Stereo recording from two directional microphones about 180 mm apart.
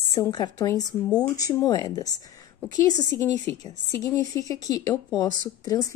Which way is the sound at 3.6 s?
20° left (ahead or behind).